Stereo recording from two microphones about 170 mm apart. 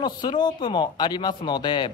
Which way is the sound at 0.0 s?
25° left (ahead or behind).